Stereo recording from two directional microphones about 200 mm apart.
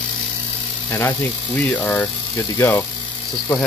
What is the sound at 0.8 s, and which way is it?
Speech, 10° left (ahead or behind).